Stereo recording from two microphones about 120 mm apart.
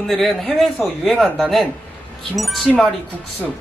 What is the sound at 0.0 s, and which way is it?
Speech, centre (ahead or behind).